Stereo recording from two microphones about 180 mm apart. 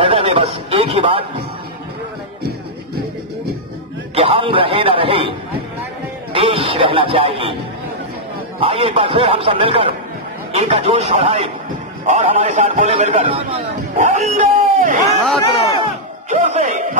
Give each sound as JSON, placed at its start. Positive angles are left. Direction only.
{"t": 0.0, "sound": "a sound", "side_deg": -30}
{"t": 4.1, "sound": "a man's voice", "side_deg": -30}
{"t": 6.3, "sound": "music", "side_deg": -30}
{"t": 8.5, "sound": "a man's voice", "side_deg": -30}
{"t": 15.8, "sound": "battle cry", "side_deg": -40}